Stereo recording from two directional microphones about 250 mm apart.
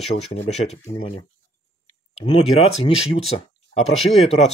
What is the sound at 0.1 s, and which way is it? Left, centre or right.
Speech, left.